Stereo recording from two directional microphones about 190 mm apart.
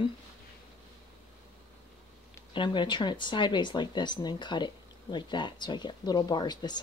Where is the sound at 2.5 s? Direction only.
25° left (ahead or behind).